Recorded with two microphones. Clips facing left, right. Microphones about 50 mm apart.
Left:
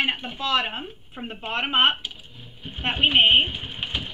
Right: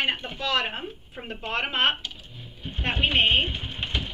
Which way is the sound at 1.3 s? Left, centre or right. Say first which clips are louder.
Left 2 dB; left.